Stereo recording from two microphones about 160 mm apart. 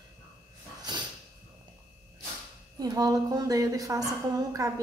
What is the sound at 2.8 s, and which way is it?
A woman's voice, 20° right (ahead or behind).